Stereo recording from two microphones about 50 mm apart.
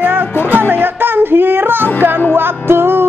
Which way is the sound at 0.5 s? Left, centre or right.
Right.